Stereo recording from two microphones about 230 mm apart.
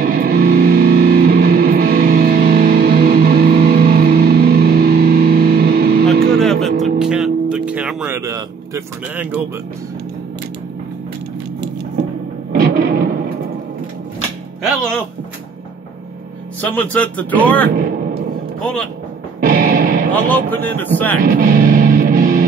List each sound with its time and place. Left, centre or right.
0.0 s music: right
6.3 s music: centre
12.5 s music: right
16.6 s speech: centre
18.6 s music: centre
19.4 s music: right
20.1 s speech: centre
21.2 s music: right